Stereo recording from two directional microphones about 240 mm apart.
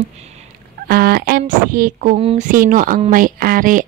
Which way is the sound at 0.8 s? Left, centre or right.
Right.